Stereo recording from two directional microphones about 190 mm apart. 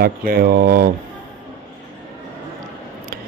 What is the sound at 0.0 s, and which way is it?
Speech, 50° right (ahead or behind).